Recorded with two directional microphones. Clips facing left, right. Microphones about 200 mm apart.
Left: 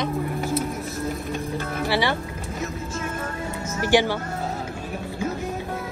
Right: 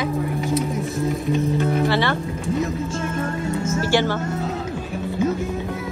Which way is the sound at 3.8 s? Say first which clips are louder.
Left 2 dB; 15° left (ahead or behind).